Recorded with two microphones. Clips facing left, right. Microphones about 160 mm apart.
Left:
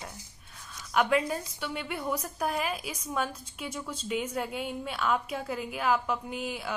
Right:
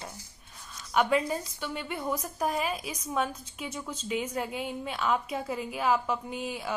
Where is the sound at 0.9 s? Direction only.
Centre (ahead or behind).